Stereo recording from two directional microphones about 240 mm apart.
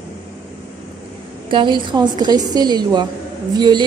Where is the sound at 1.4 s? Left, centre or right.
Centre.